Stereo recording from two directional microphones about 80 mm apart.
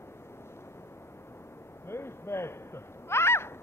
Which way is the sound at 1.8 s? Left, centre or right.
Left.